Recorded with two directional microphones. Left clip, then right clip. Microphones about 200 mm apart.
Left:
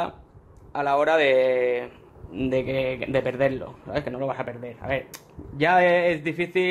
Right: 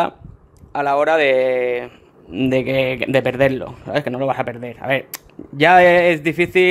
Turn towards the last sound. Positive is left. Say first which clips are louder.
# right 9 dB
turn(degrees=-55)  # may be behind; listen again after turning